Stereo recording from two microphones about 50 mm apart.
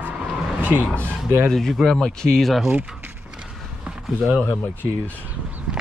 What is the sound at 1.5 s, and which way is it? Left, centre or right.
Speech, centre.